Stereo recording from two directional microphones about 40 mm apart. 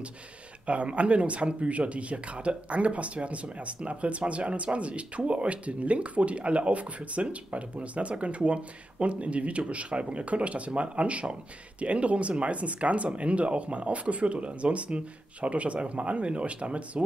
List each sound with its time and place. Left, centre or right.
0.7 s speech: right